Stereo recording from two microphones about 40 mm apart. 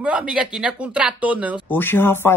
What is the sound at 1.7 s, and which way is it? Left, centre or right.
Speech, left.